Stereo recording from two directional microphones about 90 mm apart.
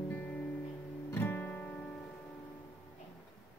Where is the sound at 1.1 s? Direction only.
25° left (ahead or behind).